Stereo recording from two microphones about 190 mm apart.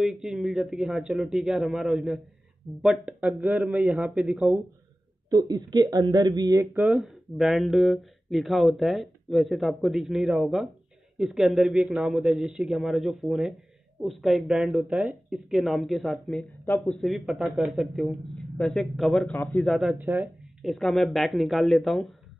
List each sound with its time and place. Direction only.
0.0 s speech: centre (ahead or behind)
5.3 s speech: 20° right (ahead or behind)
6.7 s speech: 5° right (ahead or behind)